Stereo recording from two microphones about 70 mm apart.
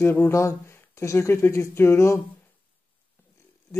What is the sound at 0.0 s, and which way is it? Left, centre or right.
Speech, left.